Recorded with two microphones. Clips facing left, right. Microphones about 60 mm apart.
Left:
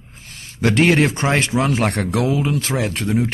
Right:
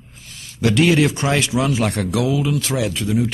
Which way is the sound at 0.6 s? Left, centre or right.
Left.